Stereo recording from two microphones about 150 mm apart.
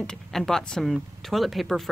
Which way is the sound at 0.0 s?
5° left (ahead or behind).